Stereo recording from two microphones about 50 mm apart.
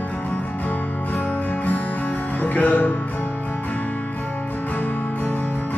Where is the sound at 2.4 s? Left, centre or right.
Left.